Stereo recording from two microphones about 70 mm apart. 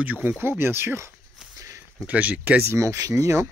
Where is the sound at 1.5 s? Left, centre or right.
Right.